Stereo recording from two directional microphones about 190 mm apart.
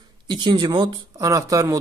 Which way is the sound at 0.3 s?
25° right (ahead or behind).